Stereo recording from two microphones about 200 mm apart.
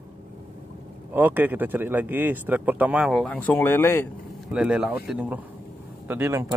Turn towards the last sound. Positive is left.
turn(degrees=-15)  # may be behind; listen again after turning